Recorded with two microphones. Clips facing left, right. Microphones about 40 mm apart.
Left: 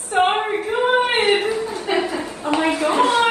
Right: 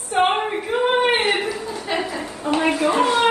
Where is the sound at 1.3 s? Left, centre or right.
Left.